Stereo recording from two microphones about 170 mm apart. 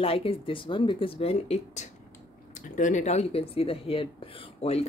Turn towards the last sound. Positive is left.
turn(degrees=35)  # may be behind; listen again after turning